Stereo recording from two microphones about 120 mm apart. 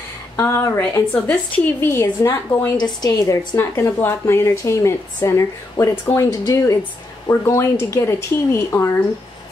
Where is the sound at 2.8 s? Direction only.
35° left (ahead or behind).